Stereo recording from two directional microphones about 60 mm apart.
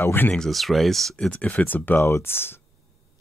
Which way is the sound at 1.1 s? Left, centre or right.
Centre.